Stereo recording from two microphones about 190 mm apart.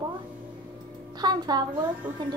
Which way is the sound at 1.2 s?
20° right (ahead or behind).